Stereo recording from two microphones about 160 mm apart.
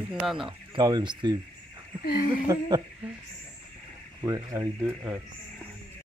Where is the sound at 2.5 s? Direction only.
25° right (ahead or behind).